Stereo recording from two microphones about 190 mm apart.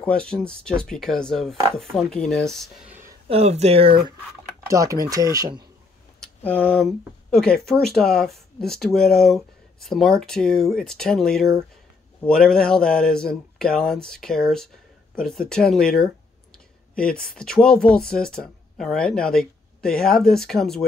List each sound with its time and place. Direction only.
0.0 s speech: 5° left (ahead or behind)
3.3 s speech: 35° right (ahead or behind)
4.6 s speech: 15° right (ahead or behind)
6.2 s speech: 5° left (ahead or behind)